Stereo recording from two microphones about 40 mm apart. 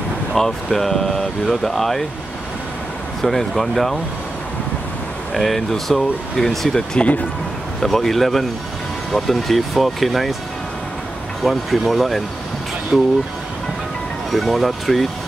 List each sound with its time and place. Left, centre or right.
0.3 s speech: centre
3.2 s speech: centre
5.3 s speech: centre
7.0 s speech: left
7.8 s speech: centre
11.4 s speech: centre
14.3 s speech: centre